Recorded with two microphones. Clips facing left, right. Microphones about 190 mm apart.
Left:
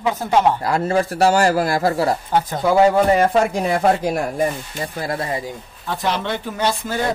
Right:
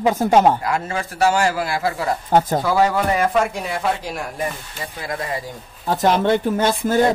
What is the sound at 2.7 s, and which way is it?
Speech, 25° left (ahead or behind).